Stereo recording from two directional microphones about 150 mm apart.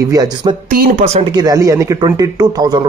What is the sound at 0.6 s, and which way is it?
Speech, 70° right (ahead or behind).